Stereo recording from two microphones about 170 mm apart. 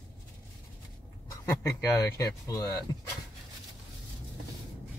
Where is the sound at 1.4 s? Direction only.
15° left (ahead or behind).